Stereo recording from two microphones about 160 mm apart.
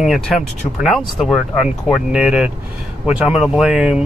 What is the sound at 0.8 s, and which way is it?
Speech, centre (ahead or behind).